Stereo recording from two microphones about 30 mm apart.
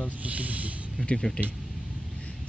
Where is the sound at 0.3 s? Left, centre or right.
Right.